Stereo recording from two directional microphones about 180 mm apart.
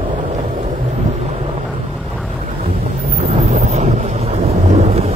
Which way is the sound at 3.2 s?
40° right (ahead or behind).